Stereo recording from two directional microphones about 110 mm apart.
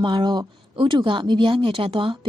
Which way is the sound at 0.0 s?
45° right (ahead or behind).